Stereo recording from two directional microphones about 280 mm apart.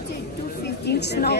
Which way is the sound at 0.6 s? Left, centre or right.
Left.